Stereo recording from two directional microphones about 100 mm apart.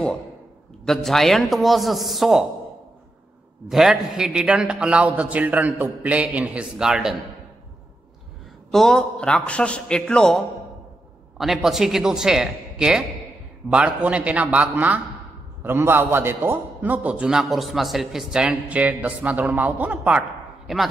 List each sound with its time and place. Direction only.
0.8 s a woman's voice: centre (ahead or behind)
3.6 s a man's voice: 5° right (ahead or behind)
8.7 s a man's voice: 5° left (ahead or behind); by 20.2 s 15° right (ahead or behind)
20.6 s a man's voice: centre (ahead or behind)